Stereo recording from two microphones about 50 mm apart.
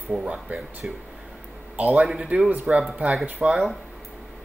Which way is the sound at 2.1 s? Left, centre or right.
Centre.